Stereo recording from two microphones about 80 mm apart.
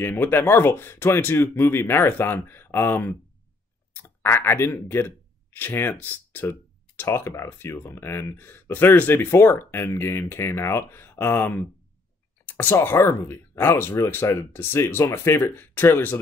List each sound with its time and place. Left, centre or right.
0.0 s speech: left
4.2 s speech: left
12.4 s a sound: left
12.8 s speech: left